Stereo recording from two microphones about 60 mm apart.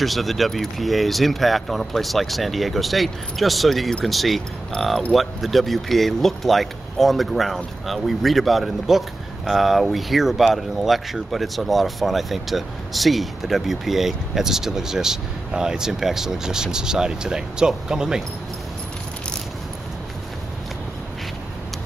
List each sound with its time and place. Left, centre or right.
0.0 s speech: centre